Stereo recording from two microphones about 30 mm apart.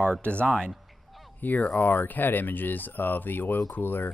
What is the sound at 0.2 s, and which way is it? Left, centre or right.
Speech, left.